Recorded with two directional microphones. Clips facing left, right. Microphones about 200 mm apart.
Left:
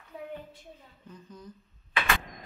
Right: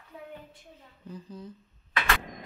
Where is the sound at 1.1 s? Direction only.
30° right (ahead or behind).